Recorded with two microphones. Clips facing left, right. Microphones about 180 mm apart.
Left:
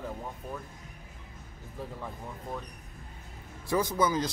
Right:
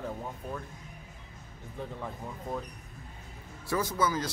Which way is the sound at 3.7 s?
15° left (ahead or behind).